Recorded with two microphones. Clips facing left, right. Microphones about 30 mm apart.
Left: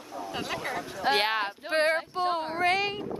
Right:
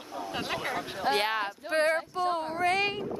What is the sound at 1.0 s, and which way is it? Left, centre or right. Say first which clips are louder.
Female singing: left 2 dB; left.